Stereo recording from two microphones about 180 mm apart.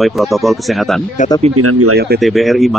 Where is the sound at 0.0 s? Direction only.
Centre (ahead or behind).